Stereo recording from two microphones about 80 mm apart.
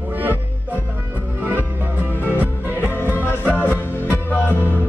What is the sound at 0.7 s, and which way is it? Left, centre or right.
Music, right.